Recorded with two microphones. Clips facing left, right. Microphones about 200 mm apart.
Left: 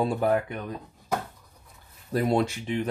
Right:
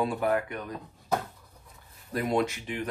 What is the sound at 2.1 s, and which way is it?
Speech, 30° left (ahead or behind).